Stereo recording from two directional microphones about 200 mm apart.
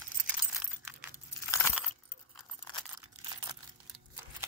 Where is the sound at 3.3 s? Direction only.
20° right (ahead or behind).